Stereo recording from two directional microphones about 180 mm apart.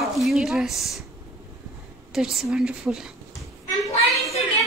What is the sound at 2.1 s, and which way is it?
Speech, centre (ahead or behind).